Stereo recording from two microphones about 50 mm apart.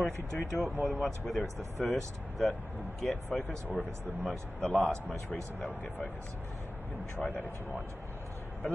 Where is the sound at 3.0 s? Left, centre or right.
Centre.